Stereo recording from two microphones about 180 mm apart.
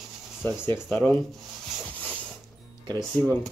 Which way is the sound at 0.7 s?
15° left (ahead or behind).